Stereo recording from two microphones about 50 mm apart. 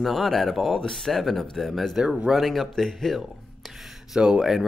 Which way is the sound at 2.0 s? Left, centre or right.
Centre.